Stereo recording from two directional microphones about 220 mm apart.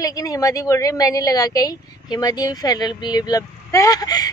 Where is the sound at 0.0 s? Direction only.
15° left (ahead or behind).